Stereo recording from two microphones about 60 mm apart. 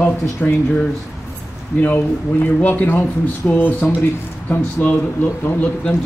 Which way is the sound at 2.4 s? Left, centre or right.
Left.